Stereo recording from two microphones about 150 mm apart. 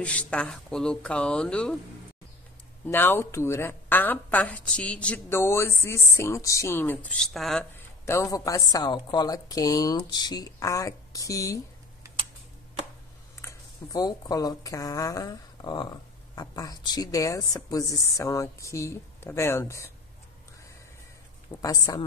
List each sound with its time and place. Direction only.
0.0 s speech: 10° left (ahead or behind)
2.9 s speech: 15° left (ahead or behind)
7.7 s speech: 20° left (ahead or behind)
13.4 s speech: 20° left (ahead or behind)
21.5 s speech: 25° left (ahead or behind)